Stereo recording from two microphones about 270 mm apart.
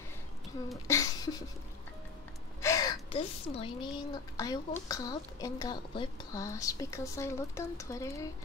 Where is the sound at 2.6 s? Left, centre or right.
Centre.